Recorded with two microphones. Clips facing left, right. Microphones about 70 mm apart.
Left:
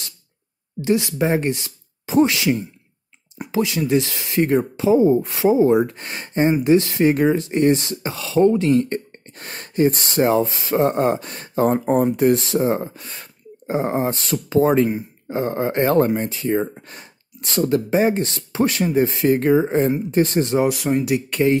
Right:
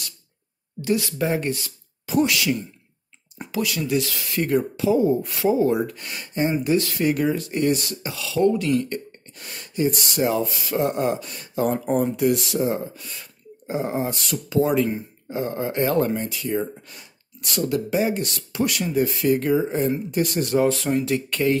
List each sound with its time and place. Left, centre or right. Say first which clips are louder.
0.8 s speech: left 4 dB; left
6.5 s speech: left 7 dB; left
20.5 s speech: even; centre